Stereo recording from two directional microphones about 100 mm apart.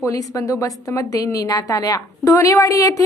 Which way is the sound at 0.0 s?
35° left (ahead or behind).